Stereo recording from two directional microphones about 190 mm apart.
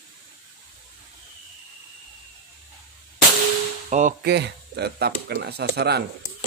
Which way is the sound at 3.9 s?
40° right (ahead or behind).